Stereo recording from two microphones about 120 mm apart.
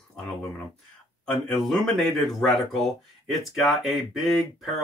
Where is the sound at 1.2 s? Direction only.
Centre (ahead or behind).